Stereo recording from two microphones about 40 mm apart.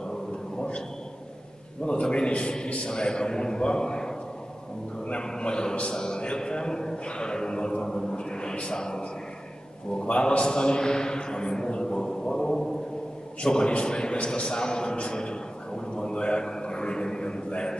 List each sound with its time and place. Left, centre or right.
1.9 s a man's voice: left